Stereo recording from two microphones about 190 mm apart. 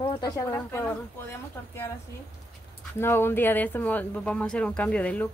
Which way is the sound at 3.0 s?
10° left (ahead or behind).